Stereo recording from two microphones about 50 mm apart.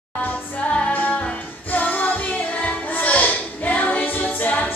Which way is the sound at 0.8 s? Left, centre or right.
Left.